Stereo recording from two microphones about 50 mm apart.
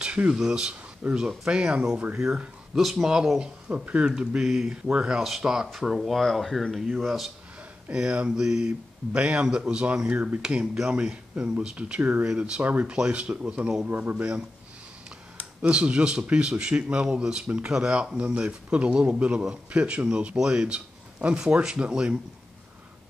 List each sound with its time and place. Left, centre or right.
0.3 s speech: centre
1.5 s speech: centre
3.3 s speech: right; by 4.6 s centre
4.8 s speech: centre
5.2 s speech: centre
7.9 s speech: centre
12.6 s speech: right
12.9 s speech: centre
15.6 s speech: centre